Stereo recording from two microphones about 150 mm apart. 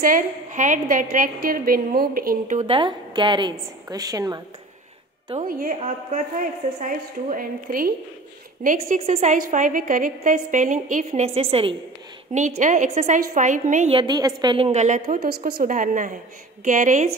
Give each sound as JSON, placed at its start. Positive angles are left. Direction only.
{"t": 0.0, "sound": "a woman's voice", "side_deg": -60}
{"t": 2.6, "sound": "a woman's voice", "side_deg": -35}
{"t": 5.8, "sound": "a woman's voice", "side_deg": -50}
{"t": 8.6, "sound": "a woman's voice", "side_deg": -55}
{"t": 12.4, "sound": "a woman's voice", "side_deg": -55}
{"t": 13.8, "sound": "a woman's voice", "side_deg": -30}
{"t": 14.7, "sound": "a woman's voice", "side_deg": -50}